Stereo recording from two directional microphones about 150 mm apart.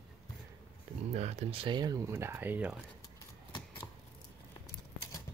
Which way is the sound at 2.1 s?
15° right (ahead or behind).